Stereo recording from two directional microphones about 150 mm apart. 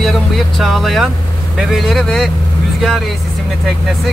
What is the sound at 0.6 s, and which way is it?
Speech, centre (ahead or behind).